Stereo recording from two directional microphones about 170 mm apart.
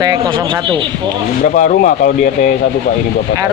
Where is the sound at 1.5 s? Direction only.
50° left (ahead or behind).